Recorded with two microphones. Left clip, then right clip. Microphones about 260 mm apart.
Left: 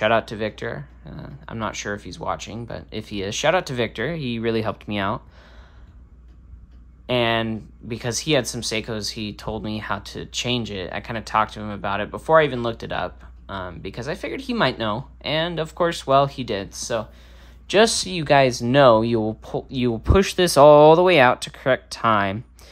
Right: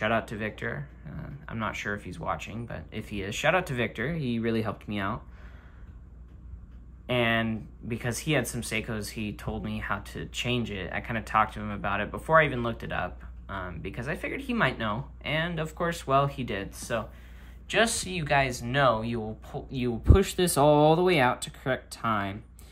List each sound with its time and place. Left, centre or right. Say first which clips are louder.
0.0 s speech: left 8 dB; centre
7.1 s speech: left 5 dB; centre